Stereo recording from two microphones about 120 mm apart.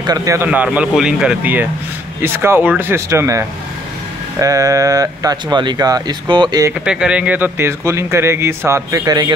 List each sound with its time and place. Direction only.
0.0 s speech: 30° right (ahead or behind)
0.5 s speech: 10° right (ahead or behind); by 6.7 s 35° right (ahead or behind)
6.8 s speech: 10° right (ahead or behind); by 9.3 s 35° right (ahead or behind)